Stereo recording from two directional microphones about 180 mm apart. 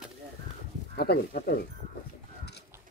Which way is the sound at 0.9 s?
60° left (ahead or behind).